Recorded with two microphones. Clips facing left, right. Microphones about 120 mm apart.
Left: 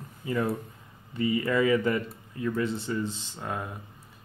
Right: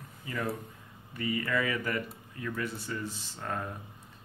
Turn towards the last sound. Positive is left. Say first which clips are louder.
# left 2 dB
turn(degrees=10)  # may be behind; listen again after turning